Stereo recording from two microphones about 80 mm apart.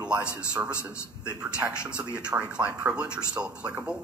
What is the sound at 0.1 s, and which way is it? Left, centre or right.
Speech, centre.